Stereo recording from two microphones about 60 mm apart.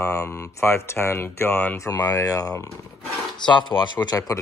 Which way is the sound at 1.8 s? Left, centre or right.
Left.